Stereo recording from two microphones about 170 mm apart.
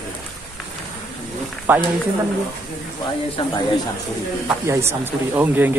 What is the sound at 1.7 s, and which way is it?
Speech, 10° right (ahead or behind).